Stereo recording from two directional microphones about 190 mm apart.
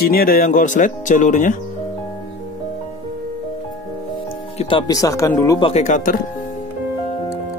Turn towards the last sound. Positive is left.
turn(degrees=45)  # may be behind; listen again after turning